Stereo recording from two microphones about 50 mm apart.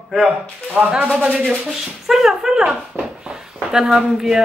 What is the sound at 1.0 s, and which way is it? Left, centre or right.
Speech, right.